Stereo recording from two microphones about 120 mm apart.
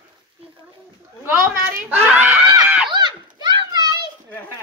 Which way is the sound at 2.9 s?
40° right (ahead or behind).